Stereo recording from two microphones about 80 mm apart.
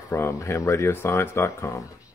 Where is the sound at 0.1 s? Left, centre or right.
Left.